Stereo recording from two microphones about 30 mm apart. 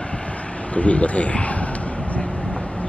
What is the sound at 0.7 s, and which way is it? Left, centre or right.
Speech, left.